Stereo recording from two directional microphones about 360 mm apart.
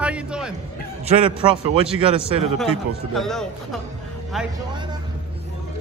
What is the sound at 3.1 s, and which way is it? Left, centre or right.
Speech, centre.